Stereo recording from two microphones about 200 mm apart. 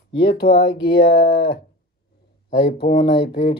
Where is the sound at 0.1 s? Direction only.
25° left (ahead or behind).